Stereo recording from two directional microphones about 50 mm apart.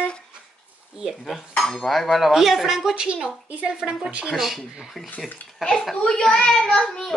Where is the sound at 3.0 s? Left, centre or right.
Centre.